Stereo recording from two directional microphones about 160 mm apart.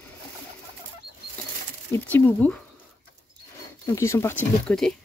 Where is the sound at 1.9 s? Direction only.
10° left (ahead or behind).